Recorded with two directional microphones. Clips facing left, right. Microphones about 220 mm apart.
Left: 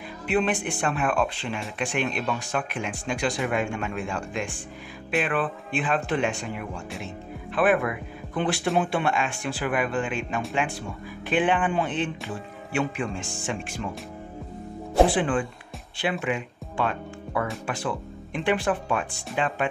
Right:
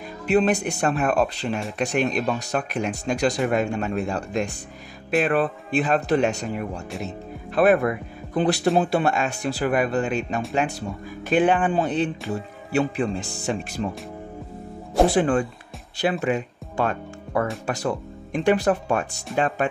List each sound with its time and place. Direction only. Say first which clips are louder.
0.3 s speech: right 5 dB; 40° right (ahead or behind)
15.0 s speech: right 4 dB; 40° right (ahead or behind)